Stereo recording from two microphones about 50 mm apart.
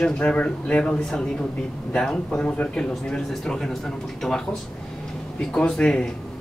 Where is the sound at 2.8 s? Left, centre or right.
Centre.